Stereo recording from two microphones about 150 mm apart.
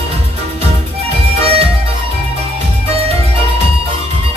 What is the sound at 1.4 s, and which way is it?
Music, 40° right (ahead or behind).